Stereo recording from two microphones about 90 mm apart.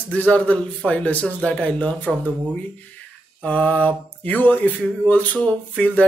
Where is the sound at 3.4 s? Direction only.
15° left (ahead or behind).